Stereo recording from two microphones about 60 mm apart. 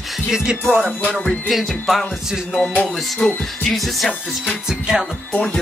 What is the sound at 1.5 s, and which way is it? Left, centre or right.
Speech, centre.